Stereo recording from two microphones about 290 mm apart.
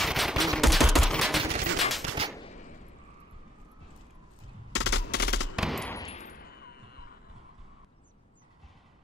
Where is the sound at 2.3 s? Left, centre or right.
Left.